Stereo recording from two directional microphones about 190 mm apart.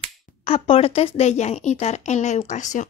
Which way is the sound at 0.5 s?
30° left (ahead or behind).